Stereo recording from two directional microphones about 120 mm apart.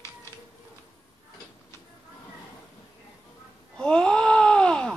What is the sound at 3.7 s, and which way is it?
Wail, 5° left (ahead or behind).